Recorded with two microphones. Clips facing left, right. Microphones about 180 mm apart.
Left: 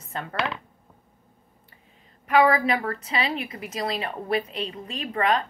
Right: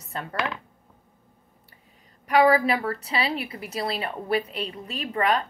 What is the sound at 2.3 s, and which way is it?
A woman's voice, 35° right (ahead or behind).